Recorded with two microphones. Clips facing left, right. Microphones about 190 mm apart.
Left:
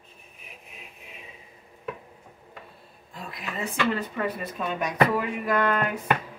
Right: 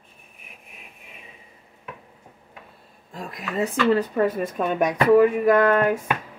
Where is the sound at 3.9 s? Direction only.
45° right (ahead or behind).